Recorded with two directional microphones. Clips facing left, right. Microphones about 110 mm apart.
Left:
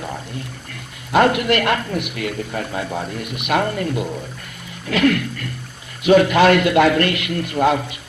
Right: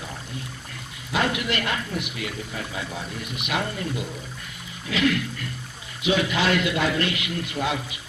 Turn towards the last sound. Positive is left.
turn(degrees=55)  # may be behind; listen again after turning